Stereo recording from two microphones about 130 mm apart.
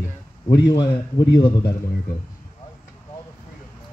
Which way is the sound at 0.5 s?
30° left (ahead or behind).